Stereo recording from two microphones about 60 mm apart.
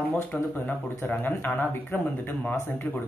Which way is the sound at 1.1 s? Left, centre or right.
Left.